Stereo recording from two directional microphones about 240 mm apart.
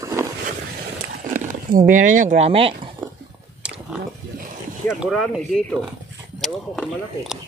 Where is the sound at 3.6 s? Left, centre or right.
Centre.